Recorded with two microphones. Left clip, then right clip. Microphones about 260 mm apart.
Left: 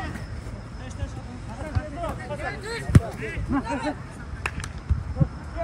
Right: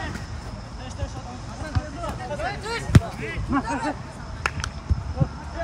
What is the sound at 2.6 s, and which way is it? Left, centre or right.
Basketball bounce, right.